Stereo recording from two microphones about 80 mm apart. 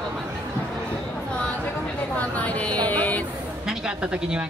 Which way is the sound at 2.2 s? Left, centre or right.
Centre.